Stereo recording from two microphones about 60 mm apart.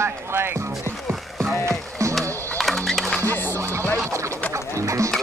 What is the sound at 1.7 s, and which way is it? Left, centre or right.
Music, right.